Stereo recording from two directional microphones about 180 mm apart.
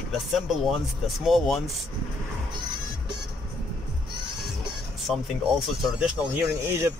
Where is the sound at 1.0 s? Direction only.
Centre (ahead or behind).